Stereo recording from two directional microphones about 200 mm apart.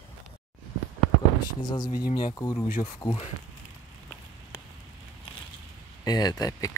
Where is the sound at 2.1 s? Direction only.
20° left (ahead or behind).